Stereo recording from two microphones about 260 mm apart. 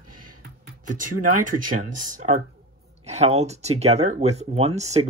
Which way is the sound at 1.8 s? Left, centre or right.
Right.